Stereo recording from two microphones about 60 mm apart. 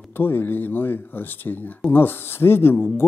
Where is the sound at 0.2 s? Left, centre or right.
Left.